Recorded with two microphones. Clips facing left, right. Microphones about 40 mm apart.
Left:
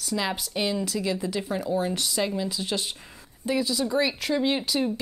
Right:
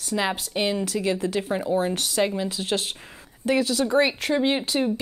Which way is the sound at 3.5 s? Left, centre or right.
Right.